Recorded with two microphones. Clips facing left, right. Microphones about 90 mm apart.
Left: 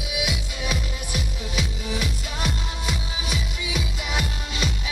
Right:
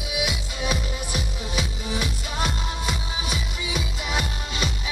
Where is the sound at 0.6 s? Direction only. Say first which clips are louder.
Right 3 dB; 20° right (ahead or behind).